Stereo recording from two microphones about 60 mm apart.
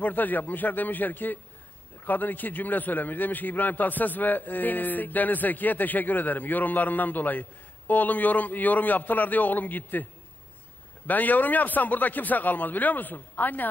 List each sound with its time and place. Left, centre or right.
0.0 s a man's voice: left
11.1 s a man's voice: left